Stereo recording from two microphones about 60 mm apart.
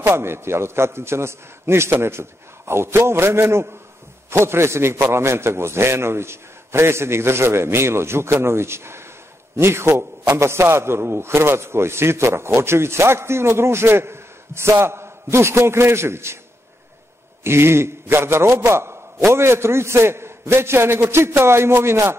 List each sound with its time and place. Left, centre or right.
0.1 s a man's voice: right
17.4 s a man's voice: right